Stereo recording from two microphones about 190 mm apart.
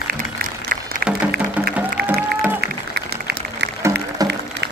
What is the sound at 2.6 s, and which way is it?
Music, 60° right (ahead or behind).